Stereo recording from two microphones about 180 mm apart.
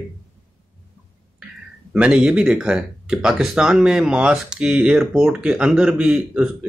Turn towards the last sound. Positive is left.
turn(degrees=-5)  # may be behind; listen again after turning